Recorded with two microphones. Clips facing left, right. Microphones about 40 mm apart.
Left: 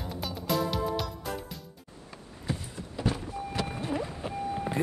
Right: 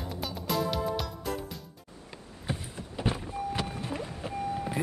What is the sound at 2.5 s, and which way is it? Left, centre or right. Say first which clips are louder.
Vehicle: left 1 dB; right.